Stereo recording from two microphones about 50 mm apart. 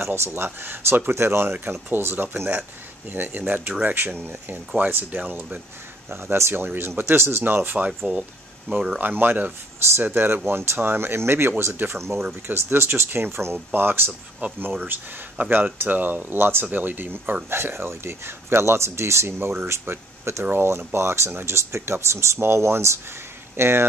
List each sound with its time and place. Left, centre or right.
0.0 s speech: right
6.2 s speech: right
6.5 s speech: right
8.1 s speech: right
9.0 s speech: right
17.5 s speech: right
19.7 s speech: right